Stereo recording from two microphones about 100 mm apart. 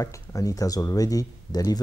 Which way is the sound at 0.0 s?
35° left (ahead or behind).